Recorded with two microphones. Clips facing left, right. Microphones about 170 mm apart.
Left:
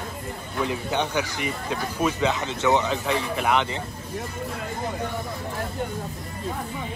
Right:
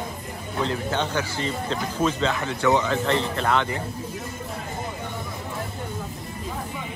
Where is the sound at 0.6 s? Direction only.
15° left (ahead or behind).